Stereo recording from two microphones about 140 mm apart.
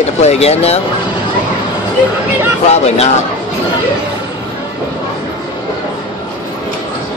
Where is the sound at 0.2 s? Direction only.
50° left (ahead or behind).